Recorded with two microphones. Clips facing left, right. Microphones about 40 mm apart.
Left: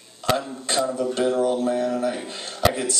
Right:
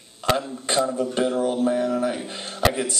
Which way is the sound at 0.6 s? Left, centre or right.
Right.